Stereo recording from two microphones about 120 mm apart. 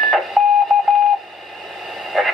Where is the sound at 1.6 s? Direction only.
Centre (ahead or behind).